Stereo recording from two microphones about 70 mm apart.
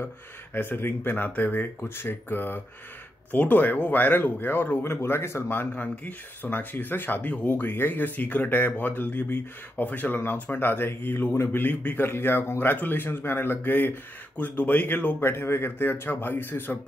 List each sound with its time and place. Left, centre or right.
0.6 s speech: left